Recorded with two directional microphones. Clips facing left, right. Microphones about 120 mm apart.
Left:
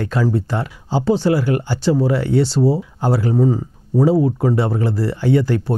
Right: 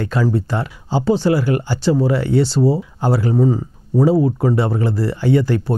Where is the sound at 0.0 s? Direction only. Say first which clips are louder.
Even; 15° right (ahead or behind).